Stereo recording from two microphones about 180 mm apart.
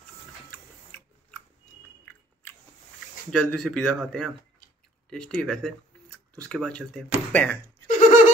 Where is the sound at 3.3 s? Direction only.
5° left (ahead or behind).